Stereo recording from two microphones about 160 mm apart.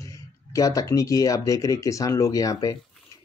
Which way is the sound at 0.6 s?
20° left (ahead or behind).